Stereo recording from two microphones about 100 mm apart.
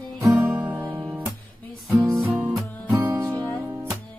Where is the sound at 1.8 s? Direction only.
35° right (ahead or behind).